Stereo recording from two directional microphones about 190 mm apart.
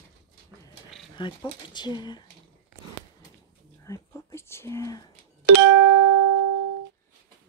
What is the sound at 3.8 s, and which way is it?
Whispering, 15° left (ahead or behind).